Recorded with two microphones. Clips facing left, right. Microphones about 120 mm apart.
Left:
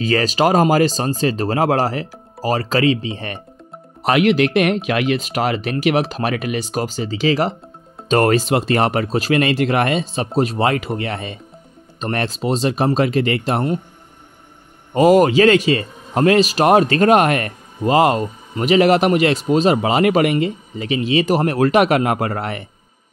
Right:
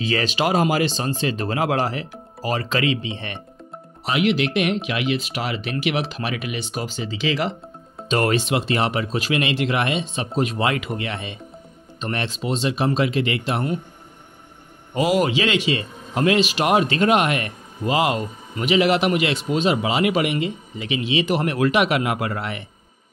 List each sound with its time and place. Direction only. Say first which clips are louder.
0.0 s speech: left 5 dB; 40° left (ahead or behind)
4.0 s speech: left 6 dB; 50° left (ahead or behind)
15.0 s speech: left 8 dB; 45° left (ahead or behind)